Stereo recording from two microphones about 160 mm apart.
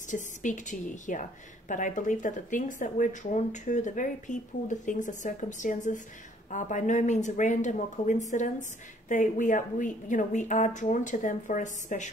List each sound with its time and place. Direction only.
0.1 s speech: 50° left (ahead or behind)